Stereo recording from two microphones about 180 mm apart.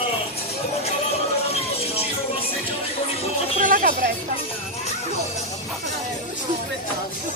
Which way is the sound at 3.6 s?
50° right (ahead or behind).